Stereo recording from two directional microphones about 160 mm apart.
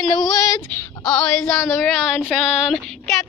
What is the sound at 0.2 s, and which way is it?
Child singing, 25° left (ahead or behind).